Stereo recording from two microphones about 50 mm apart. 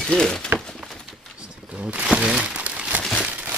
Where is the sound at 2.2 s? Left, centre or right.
Centre.